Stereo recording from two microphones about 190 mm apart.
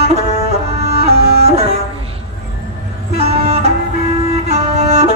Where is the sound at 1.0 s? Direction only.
35° right (ahead or behind).